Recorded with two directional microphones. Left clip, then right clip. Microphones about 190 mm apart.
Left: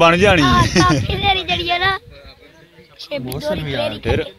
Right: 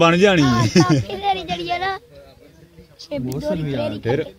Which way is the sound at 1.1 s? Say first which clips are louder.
Left 4 dB; 40° left (ahead or behind).